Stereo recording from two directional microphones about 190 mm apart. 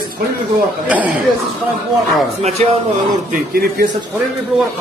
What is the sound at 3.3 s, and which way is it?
Speech, 55° right (ahead or behind).